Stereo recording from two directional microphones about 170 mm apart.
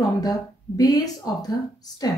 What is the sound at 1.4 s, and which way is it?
Speech, 20° left (ahead or behind).